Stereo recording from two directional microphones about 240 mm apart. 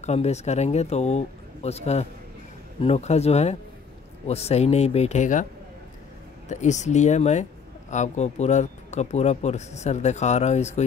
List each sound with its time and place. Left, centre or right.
0.0 s speech: left
6.5 s speech: left